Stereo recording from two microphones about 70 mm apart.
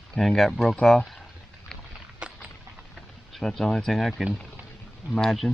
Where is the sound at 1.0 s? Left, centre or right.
Centre.